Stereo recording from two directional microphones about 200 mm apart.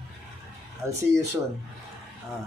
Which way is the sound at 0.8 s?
15° right (ahead or behind).